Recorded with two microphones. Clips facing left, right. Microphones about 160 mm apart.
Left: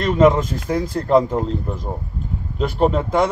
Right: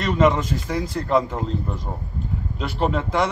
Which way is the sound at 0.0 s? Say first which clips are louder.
Left 4 dB; 50° left (ahead or behind).